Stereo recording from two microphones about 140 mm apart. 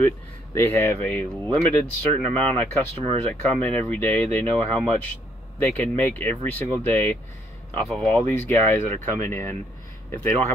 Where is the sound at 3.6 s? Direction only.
10° left (ahead or behind).